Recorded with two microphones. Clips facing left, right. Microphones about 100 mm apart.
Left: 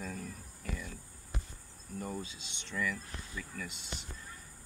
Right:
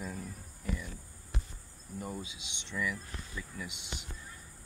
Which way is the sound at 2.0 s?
15° right (ahead or behind).